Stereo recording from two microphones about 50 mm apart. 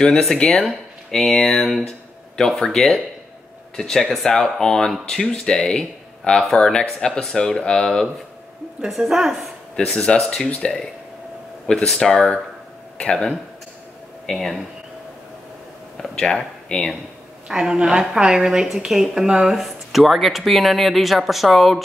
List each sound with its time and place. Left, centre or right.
0.0 s speech: centre
8.8 s a woman's voice: centre
9.8 s speech: centre
10.2 s speech: centre
10.5 s speech: centre
11.6 s speech: centre
13.0 s speech: centre
14.3 s speech: centre
16.0 s speech: centre
17.5 s a woman's voice: centre